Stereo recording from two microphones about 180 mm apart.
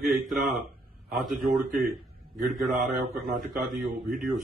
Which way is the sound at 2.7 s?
50° right (ahead or behind).